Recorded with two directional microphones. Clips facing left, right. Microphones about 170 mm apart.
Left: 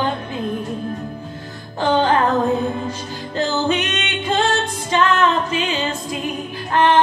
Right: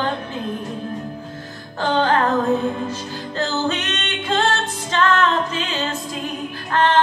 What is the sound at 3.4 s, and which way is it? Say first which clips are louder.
Music: left 3 dB; 15° left (ahead or behind).